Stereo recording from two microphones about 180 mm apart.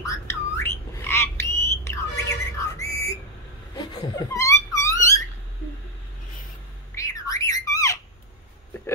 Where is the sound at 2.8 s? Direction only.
20° left (ahead or behind).